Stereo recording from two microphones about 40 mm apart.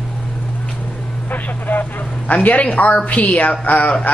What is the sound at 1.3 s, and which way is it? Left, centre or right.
A woman's voice, left.